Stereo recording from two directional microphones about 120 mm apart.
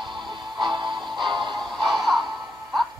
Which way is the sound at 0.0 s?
40° right (ahead or behind).